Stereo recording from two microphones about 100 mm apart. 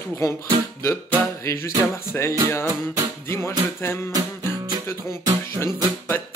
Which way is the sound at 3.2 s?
25° left (ahead or behind).